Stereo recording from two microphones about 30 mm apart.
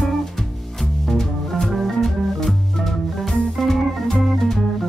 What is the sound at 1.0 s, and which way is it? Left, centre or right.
Music, centre.